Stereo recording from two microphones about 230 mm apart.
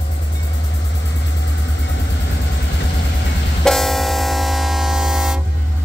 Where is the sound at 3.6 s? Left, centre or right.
Centre.